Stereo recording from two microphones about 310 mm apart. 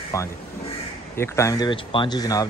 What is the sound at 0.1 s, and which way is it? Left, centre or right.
A man's voice, centre.